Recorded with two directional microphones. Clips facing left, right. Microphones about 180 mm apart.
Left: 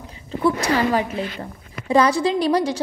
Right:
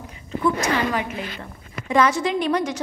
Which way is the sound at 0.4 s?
35° left (ahead or behind).